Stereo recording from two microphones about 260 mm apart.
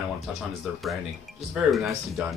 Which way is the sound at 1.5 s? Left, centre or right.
Centre.